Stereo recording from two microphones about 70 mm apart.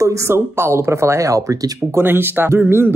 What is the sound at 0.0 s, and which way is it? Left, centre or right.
Speech, right.